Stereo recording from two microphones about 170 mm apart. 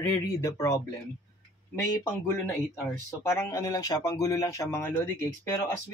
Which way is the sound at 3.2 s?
15° left (ahead or behind).